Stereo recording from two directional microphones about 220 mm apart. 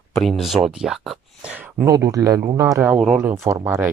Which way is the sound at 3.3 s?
10° right (ahead or behind).